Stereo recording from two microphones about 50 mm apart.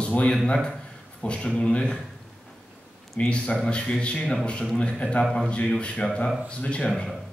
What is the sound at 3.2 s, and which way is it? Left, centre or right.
A man's voice, left.